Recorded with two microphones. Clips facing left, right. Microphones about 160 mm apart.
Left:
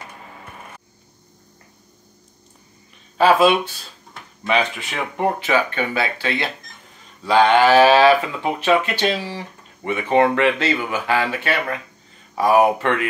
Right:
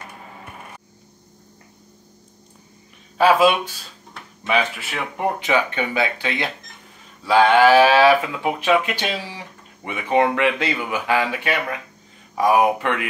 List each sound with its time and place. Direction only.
3.2 s speech: 10° right (ahead or behind)
5.4 s speech: 20° right (ahead or behind)